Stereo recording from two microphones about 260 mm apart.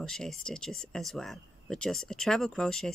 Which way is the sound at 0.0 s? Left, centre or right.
Centre.